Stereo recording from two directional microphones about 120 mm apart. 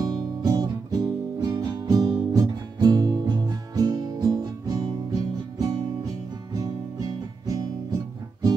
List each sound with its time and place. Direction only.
0.0 s music: 35° right (ahead or behind)